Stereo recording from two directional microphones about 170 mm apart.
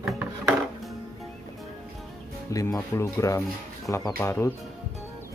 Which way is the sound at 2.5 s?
20° left (ahead or behind).